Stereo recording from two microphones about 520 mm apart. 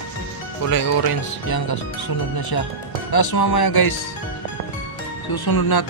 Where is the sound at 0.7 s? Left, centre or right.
Left.